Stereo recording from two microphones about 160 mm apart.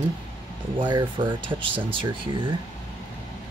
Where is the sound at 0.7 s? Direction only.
30° right (ahead or behind).